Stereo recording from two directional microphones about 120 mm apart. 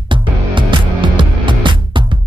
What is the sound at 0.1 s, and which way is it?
Music, 40° right (ahead or behind).